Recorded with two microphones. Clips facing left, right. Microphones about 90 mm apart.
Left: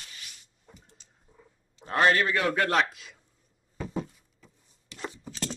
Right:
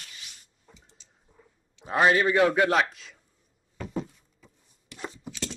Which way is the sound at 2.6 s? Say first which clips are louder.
Right 1 dB; centre (ahead or behind).